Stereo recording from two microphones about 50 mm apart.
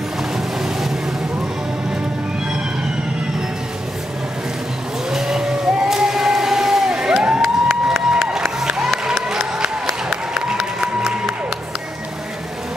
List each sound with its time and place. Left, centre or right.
0.6 s vehicle: centre
5.1 s vehicle: centre
5.9 s a sound: centre
7.8 s crowd: centre
8.2 s applause: centre